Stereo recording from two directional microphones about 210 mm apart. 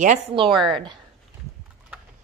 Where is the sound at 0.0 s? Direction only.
35° right (ahead or behind).